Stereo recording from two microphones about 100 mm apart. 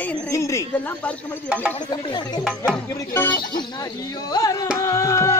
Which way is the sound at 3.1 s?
20° left (ahead or behind).